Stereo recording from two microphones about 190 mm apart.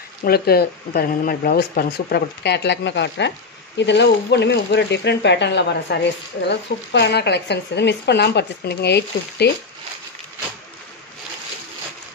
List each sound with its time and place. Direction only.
0.2 s speech: 55° left (ahead or behind)